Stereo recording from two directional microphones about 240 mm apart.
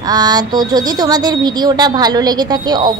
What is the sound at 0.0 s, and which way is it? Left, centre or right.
Speech, centre.